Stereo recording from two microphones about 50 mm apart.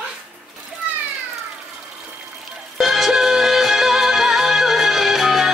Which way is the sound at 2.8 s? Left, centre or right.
Centre.